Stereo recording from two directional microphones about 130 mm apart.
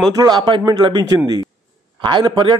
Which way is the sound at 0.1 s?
30° right (ahead or behind).